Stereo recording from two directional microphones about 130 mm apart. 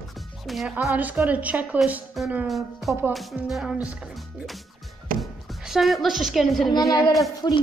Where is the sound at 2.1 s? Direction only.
Centre (ahead or behind).